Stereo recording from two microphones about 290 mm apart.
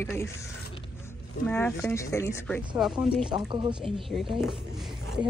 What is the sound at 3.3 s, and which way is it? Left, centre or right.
Speech, centre.